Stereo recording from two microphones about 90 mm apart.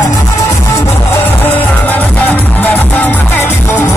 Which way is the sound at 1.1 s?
20° left (ahead or behind).